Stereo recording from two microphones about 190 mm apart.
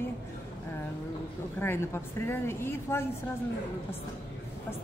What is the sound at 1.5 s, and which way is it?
Speech, 10° left (ahead or behind).